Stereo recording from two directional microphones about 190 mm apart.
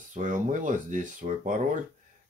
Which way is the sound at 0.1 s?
40° right (ahead or behind).